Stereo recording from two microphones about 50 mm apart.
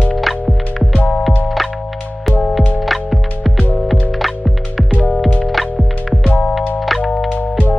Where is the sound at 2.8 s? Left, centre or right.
Centre.